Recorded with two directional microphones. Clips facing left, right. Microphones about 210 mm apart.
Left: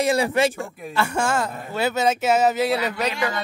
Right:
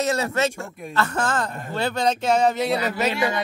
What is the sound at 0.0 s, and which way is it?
Speech, 15° left (ahead or behind).